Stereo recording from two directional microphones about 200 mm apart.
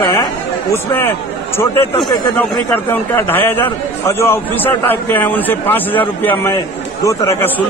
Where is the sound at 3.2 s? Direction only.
10° left (ahead or behind).